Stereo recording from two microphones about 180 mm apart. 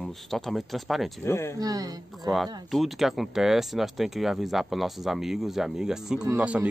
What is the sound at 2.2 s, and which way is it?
Speech, centre (ahead or behind).